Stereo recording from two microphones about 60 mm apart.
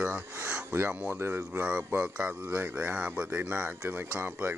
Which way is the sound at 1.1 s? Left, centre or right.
Right.